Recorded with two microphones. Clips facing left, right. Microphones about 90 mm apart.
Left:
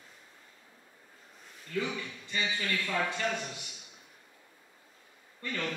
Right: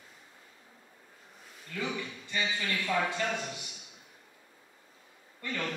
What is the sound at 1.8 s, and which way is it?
A man's voice, 20° right (ahead or behind).